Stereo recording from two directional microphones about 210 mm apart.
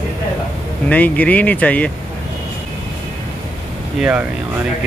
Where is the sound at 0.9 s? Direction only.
5° left (ahead or behind).